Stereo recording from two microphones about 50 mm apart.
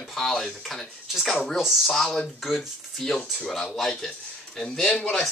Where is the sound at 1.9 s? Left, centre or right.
Centre.